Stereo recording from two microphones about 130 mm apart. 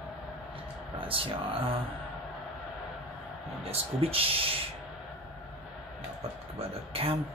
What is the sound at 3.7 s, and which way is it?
Speech, 45° right (ahead or behind).